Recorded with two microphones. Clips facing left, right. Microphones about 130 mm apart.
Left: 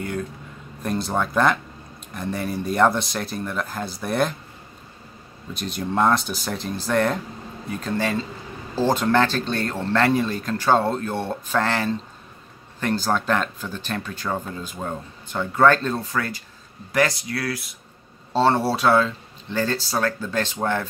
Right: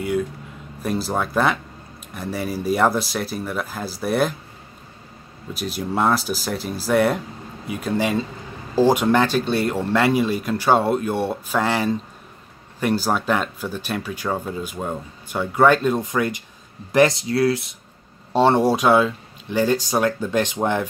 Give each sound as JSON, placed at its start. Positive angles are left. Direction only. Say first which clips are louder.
{"t": 0.8, "sound": "speech", "louder": "right 1 dB", "side_deg": -5}
{"t": 5.5, "sound": "speech", "louder": "right 1 dB", "side_deg": -5}